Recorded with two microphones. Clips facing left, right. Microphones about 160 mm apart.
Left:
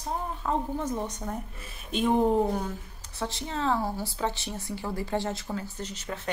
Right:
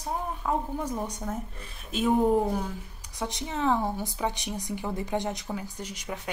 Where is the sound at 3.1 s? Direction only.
15° right (ahead or behind).